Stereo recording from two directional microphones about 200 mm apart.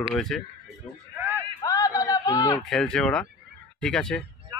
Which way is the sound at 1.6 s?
15° left (ahead or behind).